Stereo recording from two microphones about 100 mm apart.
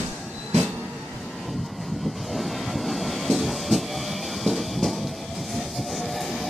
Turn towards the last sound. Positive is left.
turn(degrees=0)  # may be behind; listen again after turning